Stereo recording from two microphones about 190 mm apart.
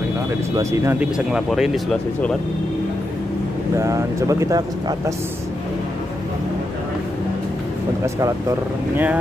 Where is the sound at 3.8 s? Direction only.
15° right (ahead or behind).